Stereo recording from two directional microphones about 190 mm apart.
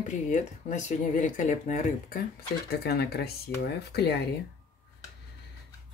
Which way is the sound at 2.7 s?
55° left (ahead or behind).